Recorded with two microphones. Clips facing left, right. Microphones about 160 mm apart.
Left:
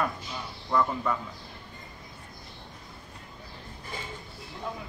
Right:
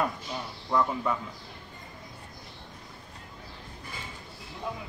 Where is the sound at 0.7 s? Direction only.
5° right (ahead or behind).